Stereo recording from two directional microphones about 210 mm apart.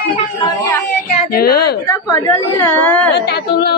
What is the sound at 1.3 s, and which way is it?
Speech, 45° left (ahead or behind).